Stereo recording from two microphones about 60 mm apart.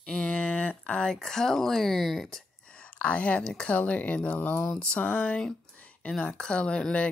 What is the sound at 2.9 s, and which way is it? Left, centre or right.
Speech, left.